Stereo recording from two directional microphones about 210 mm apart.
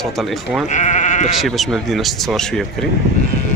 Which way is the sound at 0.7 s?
35° left (ahead or behind).